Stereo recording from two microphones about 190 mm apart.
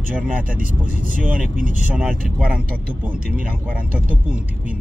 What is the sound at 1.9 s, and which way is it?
Speech, 5° right (ahead or behind).